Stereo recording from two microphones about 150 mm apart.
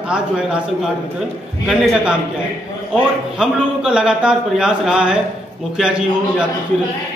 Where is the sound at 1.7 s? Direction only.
Centre (ahead or behind).